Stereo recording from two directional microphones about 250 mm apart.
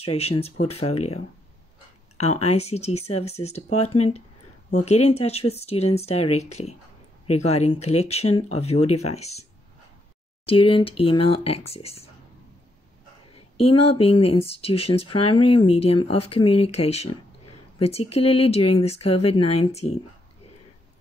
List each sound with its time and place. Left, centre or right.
0.0 s speech: left
13.6 s speech: left